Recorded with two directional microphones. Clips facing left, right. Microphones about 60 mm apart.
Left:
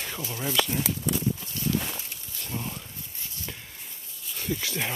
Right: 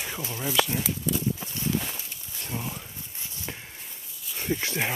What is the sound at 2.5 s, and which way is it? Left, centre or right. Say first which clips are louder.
Speech: right 1 dB; centre.